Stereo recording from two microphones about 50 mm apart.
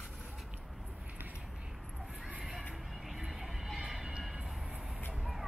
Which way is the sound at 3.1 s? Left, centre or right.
Centre.